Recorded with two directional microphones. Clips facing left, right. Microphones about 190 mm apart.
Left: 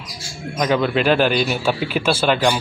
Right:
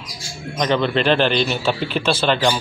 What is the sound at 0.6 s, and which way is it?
Speech, 5° left (ahead or behind).